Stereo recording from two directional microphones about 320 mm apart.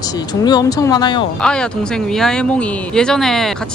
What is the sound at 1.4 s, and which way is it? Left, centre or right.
Speech, centre.